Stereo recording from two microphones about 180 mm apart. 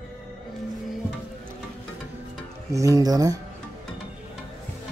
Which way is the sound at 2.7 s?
20° right (ahead or behind).